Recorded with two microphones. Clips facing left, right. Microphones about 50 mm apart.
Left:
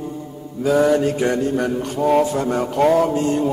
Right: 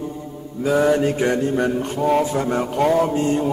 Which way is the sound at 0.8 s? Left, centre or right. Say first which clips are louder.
Left 1 dB; centre.